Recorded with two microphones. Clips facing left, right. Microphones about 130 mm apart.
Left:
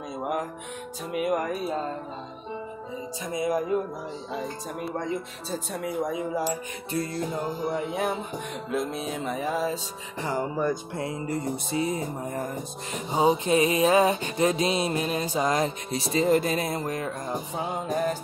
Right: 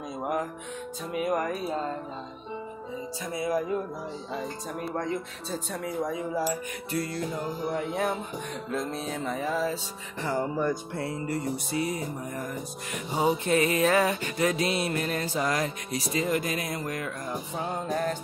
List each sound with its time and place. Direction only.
1.1 s music: 10° left (ahead or behind)
3.3 s music: 20° left (ahead or behind)
4.7 s speech: centre (ahead or behind)
5.8 s music: 15° left (ahead or behind)
7.7 s music: 15° left (ahead or behind)
17.6 s music: 15° left (ahead or behind)